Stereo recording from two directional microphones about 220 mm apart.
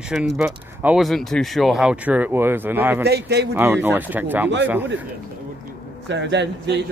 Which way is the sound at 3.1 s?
50° right (ahead or behind).